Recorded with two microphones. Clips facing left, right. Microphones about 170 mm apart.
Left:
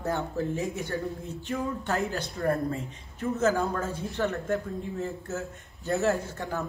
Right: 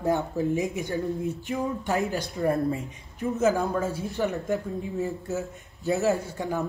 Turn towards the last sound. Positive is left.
turn(degrees=-10)  # may be behind; listen again after turning